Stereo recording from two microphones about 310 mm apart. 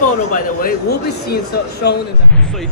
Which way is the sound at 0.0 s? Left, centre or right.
Left.